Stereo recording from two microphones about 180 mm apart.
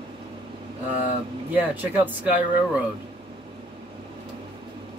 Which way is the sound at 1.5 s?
10° right (ahead or behind).